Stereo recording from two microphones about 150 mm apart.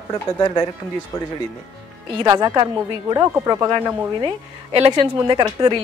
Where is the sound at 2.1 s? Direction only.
20° right (ahead or behind).